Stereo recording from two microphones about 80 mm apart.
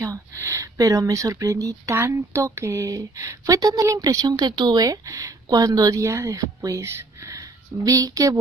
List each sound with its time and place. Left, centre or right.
0.0 s a woman's voice: right